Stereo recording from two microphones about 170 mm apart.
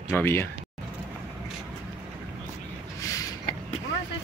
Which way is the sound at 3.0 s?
20° left (ahead or behind).